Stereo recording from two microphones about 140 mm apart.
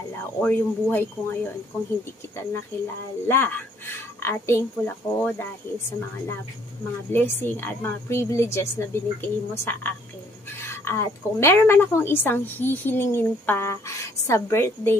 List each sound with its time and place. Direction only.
0.2 s a woman's voice: 15° left (ahead or behind)
3.3 s a woman's voice: 15° left (ahead or behind)